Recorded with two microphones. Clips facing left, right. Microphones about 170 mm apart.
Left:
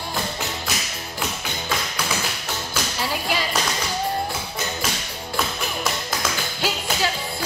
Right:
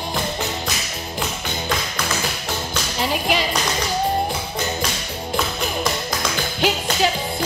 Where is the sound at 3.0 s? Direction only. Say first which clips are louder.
Right 5 dB; 20° right (ahead or behind).